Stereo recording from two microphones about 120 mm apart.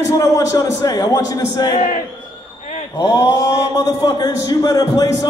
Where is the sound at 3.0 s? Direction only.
30° left (ahead or behind).